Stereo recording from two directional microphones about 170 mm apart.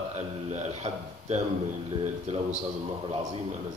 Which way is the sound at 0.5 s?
40° right (ahead or behind).